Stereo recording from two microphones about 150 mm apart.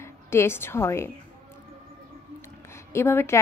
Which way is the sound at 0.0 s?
15° left (ahead or behind).